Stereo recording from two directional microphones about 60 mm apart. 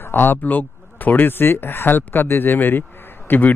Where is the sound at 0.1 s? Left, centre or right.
Left.